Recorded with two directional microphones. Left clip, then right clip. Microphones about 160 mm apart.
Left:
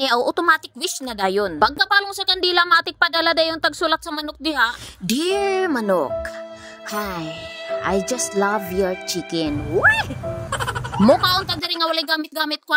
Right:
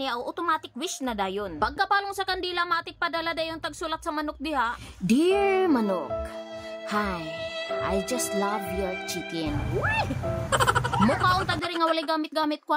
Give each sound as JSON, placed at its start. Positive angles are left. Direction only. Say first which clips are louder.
{"t": 0.0, "sound": "a woman's voice", "louder": "left 11 dB", "side_deg": 45}
{"t": 10.5, "sound": "music", "louder": "right 4 dB", "side_deg": 0}
{"t": 11.1, "sound": "a woman's voice", "louder": "left 4 dB", "side_deg": 50}